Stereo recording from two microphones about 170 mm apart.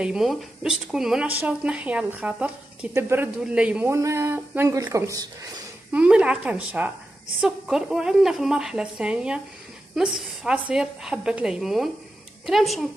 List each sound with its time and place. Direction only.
0.0 s speech: 5° right (ahead or behind); by 5.5 s 20° right (ahead or behind)
5.9 s a woman's voice: 5° right (ahead or behind)